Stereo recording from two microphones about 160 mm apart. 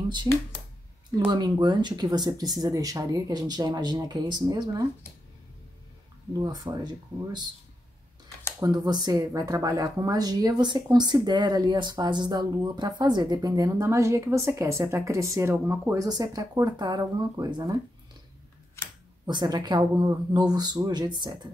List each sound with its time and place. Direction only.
0.3 s speech: 25° right (ahead or behind)
6.3 s speech: 25° right (ahead or behind)
8.5 s speech: 25° right (ahead or behind)
19.2 s speech: 25° right (ahead or behind)